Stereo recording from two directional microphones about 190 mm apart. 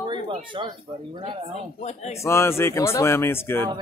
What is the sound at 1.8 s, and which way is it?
Speech, 35° left (ahead or behind).